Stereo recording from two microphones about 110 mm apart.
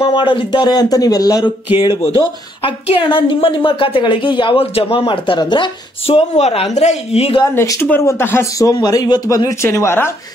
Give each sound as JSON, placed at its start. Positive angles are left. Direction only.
{"t": 0.1, "sound": "speech", "side_deg": 45}
{"t": 2.0, "sound": "a woman's voice", "side_deg": 60}
{"t": 6.0, "sound": "a woman's voice", "side_deg": 70}
{"t": 7.4, "sound": "speech", "side_deg": 25}